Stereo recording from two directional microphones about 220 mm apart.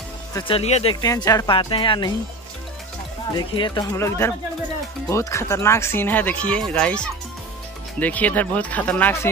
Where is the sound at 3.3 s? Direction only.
20° left (ahead or behind).